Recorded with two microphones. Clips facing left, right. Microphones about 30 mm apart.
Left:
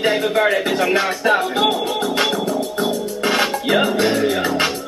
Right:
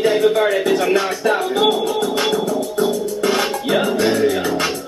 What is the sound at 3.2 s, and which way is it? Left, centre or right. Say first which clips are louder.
Music: left 1 dB; left.